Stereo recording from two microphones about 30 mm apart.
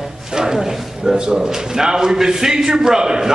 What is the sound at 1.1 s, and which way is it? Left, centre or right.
A man's voice, right.